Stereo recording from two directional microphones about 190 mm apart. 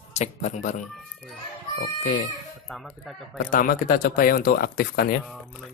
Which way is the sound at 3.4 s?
45° left (ahead or behind).